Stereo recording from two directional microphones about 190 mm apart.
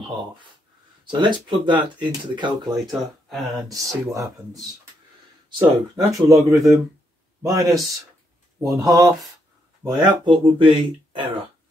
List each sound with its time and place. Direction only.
1.1 s speech: 25° right (ahead or behind)
3.0 s speech: centre (ahead or behind)
3.8 s speech: 15° right (ahead or behind)
5.5 s speech: 20° right (ahead or behind)